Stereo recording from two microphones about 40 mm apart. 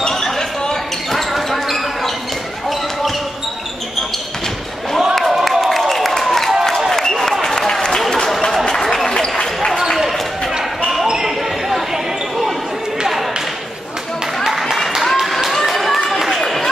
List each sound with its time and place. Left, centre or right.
0.1 s a sound: centre
1.1 s basketball bounce: centre
5.2 s a sound: centre
8.8 s basketball bounce: centre
11.1 s basketball bounce: centre
14.4 s music: centre
15.5 s run: centre